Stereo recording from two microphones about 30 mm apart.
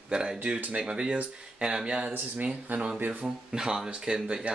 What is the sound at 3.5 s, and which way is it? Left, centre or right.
Speech, right.